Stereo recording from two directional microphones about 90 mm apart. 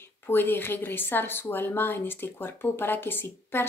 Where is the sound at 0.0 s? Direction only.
25° left (ahead or behind).